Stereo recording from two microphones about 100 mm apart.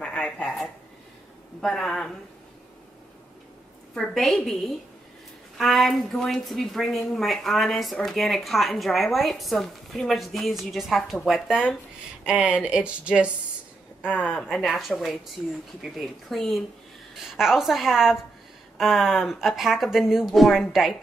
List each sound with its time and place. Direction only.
0.0 s a woman's voice: 10° left (ahead or behind)
3.9 s a woman's voice: 5° left (ahead or behind)
5.6 s a woman's voice: centre (ahead or behind)
14.0 s a woman's voice: 15° left (ahead or behind)
14.5 s a woman's voice: centre (ahead or behind)